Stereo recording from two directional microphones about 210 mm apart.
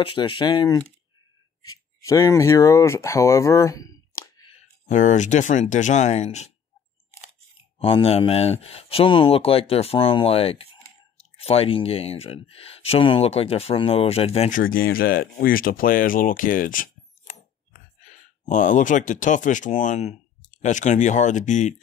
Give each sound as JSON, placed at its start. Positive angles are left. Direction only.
{"t": 0.0, "sound": "speech", "side_deg": 25}
{"t": 4.8, "sound": "speech", "side_deg": 35}
{"t": 7.8, "sound": "speech", "side_deg": 25}
{"t": 14.6, "sound": "speech", "side_deg": 45}
{"t": 18.4, "sound": "speech", "side_deg": 35}